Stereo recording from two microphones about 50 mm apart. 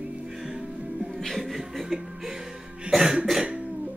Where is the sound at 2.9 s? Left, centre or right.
Centre.